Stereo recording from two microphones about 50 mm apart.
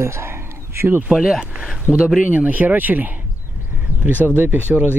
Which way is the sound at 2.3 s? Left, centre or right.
Right.